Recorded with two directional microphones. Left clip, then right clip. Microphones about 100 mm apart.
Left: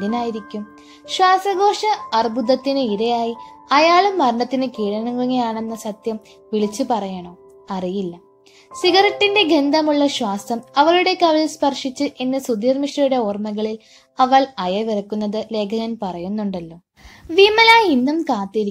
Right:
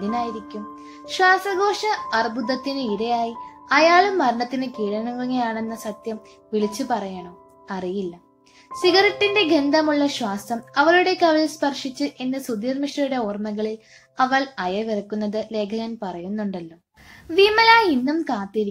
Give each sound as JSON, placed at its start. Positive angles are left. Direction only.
{"t": 0.0, "sound": "a child's voice", "side_deg": 45}